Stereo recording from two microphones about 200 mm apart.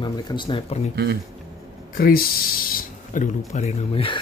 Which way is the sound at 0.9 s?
55° right (ahead or behind).